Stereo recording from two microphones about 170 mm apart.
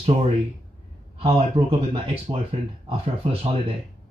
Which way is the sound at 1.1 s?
35° right (ahead or behind).